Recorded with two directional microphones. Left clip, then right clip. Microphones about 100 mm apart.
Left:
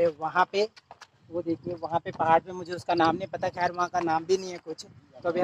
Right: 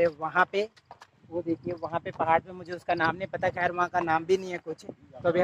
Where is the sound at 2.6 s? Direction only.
15° left (ahead or behind).